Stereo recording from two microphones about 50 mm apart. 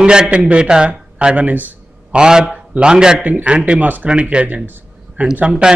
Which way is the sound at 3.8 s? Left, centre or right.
Right.